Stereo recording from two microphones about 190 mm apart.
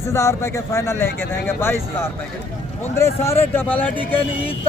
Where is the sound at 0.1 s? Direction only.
15° left (ahead or behind).